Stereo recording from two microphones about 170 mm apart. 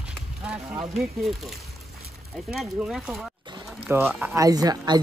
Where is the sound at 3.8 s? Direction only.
10° right (ahead or behind).